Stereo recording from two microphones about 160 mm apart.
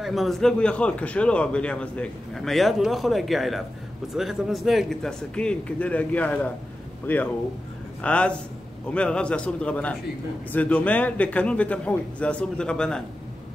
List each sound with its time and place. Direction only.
0.0 s a man's voice: centre (ahead or behind)